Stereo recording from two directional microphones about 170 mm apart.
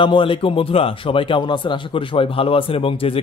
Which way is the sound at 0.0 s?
30° left (ahead or behind).